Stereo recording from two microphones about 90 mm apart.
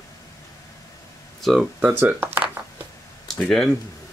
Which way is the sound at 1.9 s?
25° right (ahead or behind).